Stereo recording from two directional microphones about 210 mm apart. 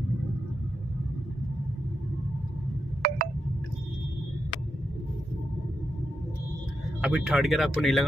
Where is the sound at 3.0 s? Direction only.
45° right (ahead or behind).